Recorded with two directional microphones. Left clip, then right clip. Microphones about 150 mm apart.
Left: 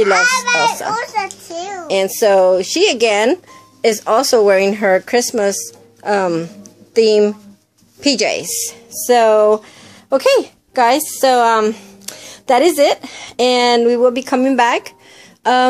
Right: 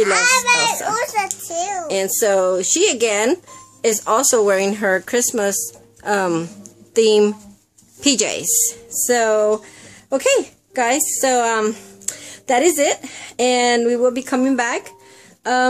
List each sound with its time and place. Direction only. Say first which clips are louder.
0.0 s a child's voice: left 2 dB; 25° right (ahead or behind)
1.9 s a woman's voice: left 7 dB; 10° left (ahead or behind); by 15.7 s 25° left (ahead or behind)